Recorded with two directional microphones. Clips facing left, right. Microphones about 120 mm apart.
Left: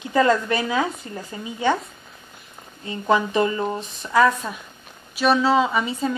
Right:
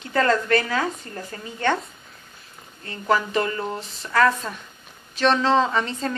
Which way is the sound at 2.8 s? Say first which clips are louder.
Left 2 dB; 20° left (ahead or behind).